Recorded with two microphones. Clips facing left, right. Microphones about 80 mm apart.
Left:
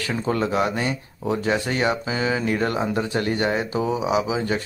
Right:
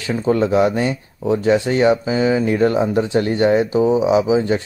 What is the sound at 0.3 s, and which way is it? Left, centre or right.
Speech, right.